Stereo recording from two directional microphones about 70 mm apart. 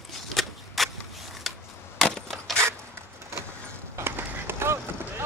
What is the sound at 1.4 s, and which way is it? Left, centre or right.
Chop, centre.